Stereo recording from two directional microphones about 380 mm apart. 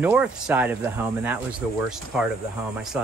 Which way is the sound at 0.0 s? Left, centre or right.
Centre.